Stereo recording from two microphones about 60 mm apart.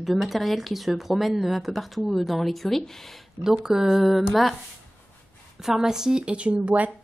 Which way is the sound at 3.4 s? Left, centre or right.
Centre.